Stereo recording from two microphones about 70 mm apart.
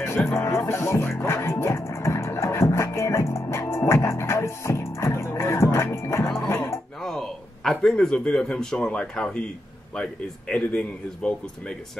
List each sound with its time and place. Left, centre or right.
0.4 s music: left
7.0 s a man's voice: centre
10.6 s a man's voice: centre